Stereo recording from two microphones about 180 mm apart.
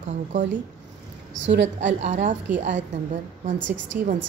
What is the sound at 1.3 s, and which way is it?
Speech, 90° right.